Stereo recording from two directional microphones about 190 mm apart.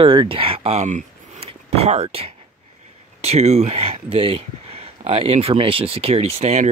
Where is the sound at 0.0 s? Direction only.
30° right (ahead or behind).